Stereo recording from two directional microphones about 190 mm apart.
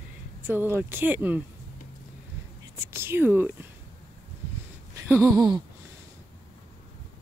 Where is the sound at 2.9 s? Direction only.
10° right (ahead or behind).